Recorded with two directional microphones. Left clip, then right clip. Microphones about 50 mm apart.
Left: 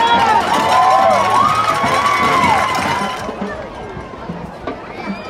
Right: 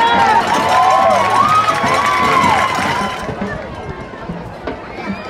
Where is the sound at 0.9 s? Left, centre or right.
Centre.